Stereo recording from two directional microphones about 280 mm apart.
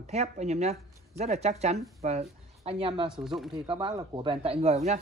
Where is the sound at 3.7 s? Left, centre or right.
Centre.